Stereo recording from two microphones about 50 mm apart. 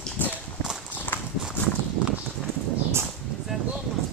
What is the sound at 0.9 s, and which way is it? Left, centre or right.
Clip-clop, left.